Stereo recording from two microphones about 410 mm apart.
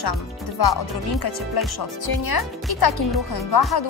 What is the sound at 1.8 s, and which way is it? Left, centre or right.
A woman's voice, left.